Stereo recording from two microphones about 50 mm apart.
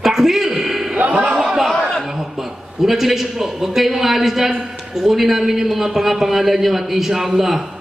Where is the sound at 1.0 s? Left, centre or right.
Right.